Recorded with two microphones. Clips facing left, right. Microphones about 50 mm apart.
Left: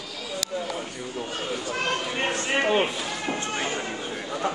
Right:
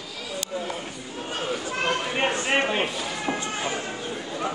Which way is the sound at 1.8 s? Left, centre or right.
Centre.